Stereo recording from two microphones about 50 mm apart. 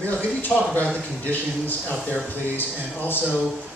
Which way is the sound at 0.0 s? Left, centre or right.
Left.